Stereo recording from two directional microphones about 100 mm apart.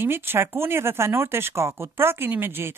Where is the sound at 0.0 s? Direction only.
20° right (ahead or behind).